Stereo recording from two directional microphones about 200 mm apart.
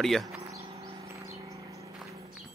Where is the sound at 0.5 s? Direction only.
30° right (ahead or behind).